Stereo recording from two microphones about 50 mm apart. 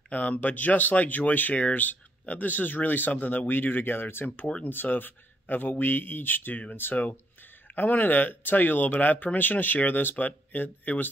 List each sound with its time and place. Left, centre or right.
0.1 s speech: left